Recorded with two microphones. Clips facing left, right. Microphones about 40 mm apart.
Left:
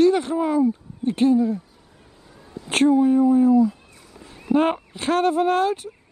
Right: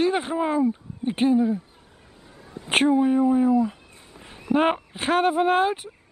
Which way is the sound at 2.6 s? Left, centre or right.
Right.